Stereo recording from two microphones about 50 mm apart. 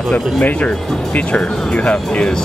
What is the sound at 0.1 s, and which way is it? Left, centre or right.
Speech, left.